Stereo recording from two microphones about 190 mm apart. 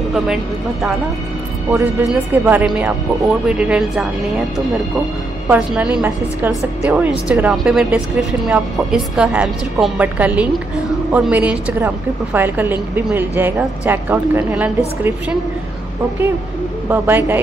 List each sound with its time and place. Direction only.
1.7 s a woman's voice: 10° right (ahead or behind)
5.5 s a woman's voice: 5° right (ahead or behind)
16.9 s a woman's voice: 10° right (ahead or behind)